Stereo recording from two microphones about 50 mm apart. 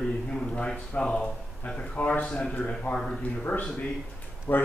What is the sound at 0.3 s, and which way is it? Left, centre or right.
A man's voice, centre.